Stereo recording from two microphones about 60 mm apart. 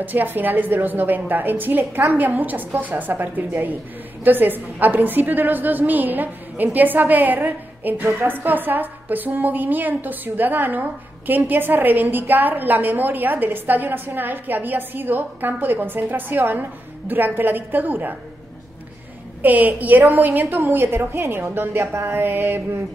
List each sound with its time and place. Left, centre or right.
0.0 s a woman's voice: right
19.4 s a woman's voice: right